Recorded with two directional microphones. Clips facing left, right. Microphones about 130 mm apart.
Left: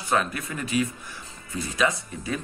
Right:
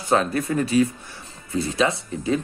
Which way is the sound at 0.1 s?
35° right (ahead or behind).